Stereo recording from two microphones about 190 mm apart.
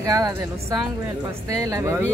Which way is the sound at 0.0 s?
15° right (ahead or behind).